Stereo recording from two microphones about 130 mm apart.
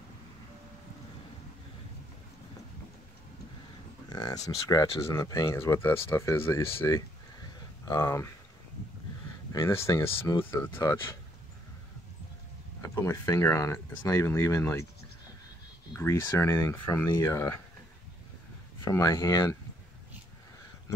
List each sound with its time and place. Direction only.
4.1 s speech: 30° left (ahead or behind)
9.5 s speech: 25° left (ahead or behind)
12.8 s speech: 20° left (ahead or behind)
16.0 s speech: 20° left (ahead or behind)
18.9 s speech: 25° left (ahead or behind)